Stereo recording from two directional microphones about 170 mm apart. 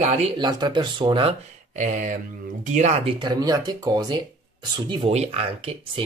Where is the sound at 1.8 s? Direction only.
45° right (ahead or behind).